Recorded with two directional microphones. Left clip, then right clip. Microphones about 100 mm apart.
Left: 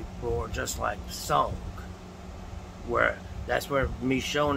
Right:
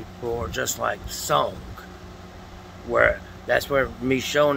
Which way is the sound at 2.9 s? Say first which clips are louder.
Right 6 dB; 5° right (ahead or behind).